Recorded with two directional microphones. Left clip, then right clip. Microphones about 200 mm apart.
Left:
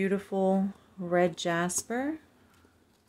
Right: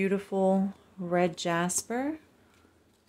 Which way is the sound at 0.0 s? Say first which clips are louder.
Right 1 dB; centre (ahead or behind).